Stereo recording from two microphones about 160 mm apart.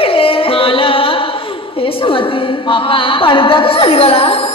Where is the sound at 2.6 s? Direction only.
30° left (ahead or behind).